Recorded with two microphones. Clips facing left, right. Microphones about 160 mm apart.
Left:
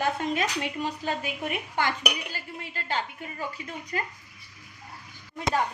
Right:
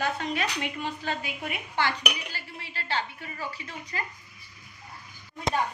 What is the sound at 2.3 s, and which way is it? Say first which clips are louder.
Dishes: left 3 dB; 45° left (ahead or behind).